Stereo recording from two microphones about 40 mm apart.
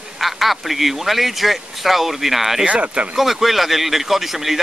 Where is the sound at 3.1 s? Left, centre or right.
Centre.